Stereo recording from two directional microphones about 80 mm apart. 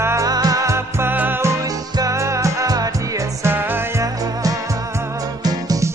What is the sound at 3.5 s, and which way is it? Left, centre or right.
Music, right.